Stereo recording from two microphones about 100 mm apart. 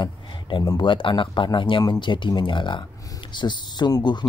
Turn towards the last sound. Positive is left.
turn(degrees=45)  # may be behind; listen again after turning